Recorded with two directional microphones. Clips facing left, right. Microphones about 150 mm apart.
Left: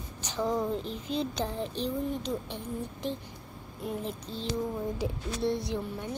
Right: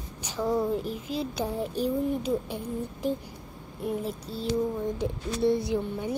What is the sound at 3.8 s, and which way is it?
A child's voice, 5° right (ahead or behind).